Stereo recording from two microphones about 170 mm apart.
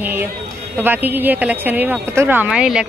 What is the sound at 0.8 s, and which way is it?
Speech, 10° right (ahead or behind).